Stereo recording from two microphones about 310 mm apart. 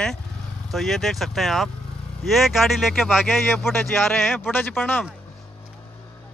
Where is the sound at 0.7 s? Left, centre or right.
Centre.